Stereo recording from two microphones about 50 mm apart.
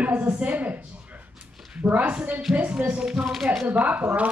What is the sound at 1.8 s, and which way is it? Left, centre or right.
Speech, right.